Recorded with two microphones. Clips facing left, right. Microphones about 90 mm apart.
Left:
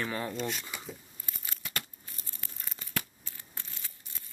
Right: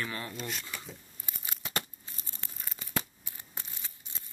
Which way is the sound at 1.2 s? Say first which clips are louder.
Right 2 dB; 20° right (ahead or behind).